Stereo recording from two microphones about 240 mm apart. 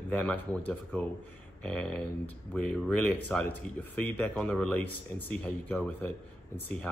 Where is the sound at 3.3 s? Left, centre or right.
Centre.